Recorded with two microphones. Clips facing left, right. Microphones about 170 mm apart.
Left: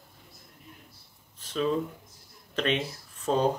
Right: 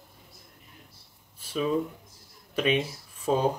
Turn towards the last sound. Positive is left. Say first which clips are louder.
# even
turn(degrees=-10)  # may be behind; listen again after turning